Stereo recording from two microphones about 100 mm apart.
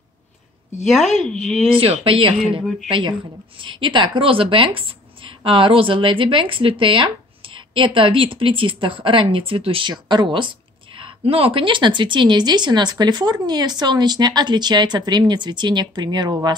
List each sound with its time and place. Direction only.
0.8 s speech: centre (ahead or behind)
1.7 s a woman's voice: 70° right (ahead or behind)
9.8 s speech: 50° right (ahead or behind)
11.0 s speech: 65° right (ahead or behind); by 16.3 s 45° right (ahead or behind)